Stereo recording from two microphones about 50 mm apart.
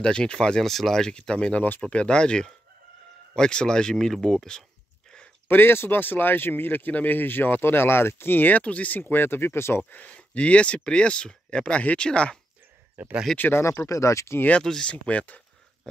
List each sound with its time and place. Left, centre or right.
0.0 s speech: centre
0.7 s speech: centre
5.5 s speech: left
9.0 s speech: left
9.8 s speech: left
13.4 s speech: left
13.8 s speech: left
14.6 s speech: centre
14.9 s speech: left